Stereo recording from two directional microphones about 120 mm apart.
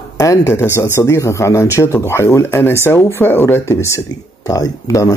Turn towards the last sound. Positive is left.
turn(degrees=30)  # may be behind; listen again after turning